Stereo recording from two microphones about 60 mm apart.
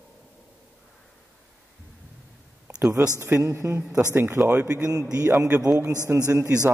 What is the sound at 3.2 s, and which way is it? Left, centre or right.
Speech, right.